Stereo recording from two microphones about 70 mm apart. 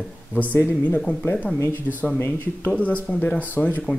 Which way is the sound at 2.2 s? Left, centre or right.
Left.